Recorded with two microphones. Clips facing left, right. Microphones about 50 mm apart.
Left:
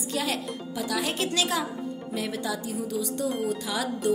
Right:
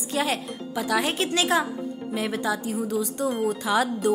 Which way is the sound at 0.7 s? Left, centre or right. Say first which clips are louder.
Right 5 dB; right.